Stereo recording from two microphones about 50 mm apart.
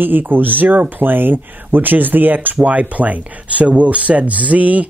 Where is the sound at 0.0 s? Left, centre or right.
Right.